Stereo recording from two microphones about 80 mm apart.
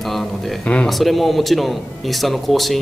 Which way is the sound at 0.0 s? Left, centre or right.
Centre.